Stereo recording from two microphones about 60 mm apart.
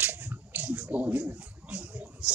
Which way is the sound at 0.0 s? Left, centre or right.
Right.